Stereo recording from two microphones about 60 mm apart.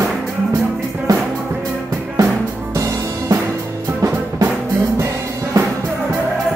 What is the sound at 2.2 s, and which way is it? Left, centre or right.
Music, right.